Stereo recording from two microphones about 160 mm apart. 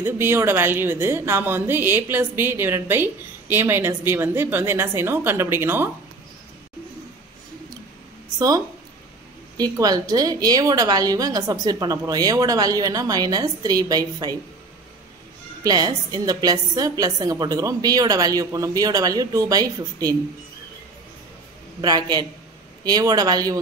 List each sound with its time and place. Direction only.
0.0 s speech: 15° right (ahead or behind)
8.4 s a woman's voice: 25° right (ahead or behind)
15.6 s a woman's voice: 25° right (ahead or behind)
21.8 s a woman's voice: 25° right (ahead or behind)